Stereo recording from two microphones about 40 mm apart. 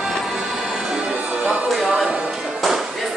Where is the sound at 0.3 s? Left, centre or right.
Centre.